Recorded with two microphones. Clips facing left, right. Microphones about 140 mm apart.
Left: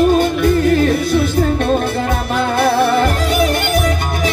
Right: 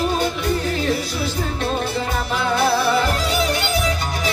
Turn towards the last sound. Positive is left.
turn(degrees=50)  # may be behind; listen again after turning